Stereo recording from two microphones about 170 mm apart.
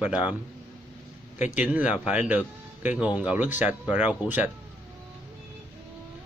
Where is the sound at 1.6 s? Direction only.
10° right (ahead or behind).